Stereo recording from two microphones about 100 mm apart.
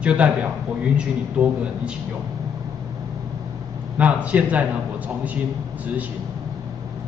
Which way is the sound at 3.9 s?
15° right (ahead or behind).